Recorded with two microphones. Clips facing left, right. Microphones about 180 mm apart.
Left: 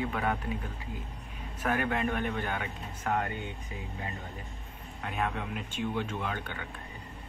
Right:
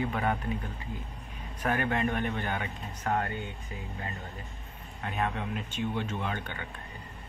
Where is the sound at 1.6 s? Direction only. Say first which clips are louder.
Right 1 dB; 5° left (ahead or behind).